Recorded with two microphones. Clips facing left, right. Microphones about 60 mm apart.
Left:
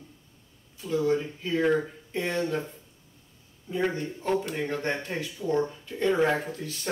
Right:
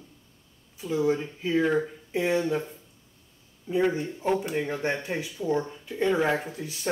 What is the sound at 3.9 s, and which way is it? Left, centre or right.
Speech, centre.